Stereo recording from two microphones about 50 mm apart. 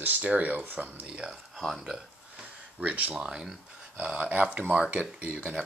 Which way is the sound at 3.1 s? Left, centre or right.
Centre.